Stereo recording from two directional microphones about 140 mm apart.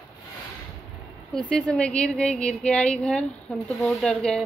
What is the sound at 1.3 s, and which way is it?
A woman's voice, 5° left (ahead or behind).